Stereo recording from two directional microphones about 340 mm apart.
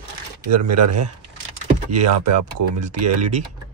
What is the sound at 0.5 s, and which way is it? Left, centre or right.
Speech, right.